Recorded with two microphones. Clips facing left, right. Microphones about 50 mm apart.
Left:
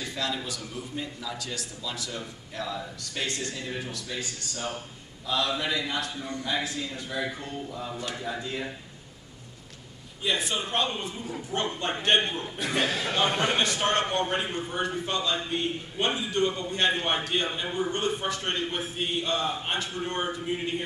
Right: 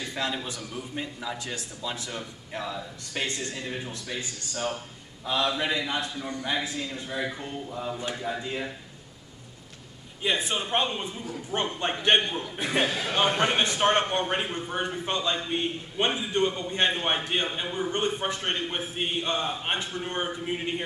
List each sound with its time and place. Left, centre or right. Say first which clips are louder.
0.0 s a sound: right 1 dB; right
0.5 s a man's voice: even; right
10.2 s speech: right 1 dB; right